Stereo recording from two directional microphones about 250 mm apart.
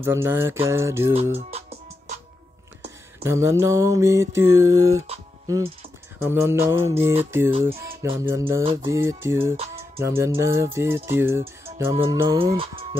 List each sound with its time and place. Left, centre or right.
0.0 s music: centre
1.5 s music: right
3.3 s music: centre
5.0 s a sound: right
6.2 s music: centre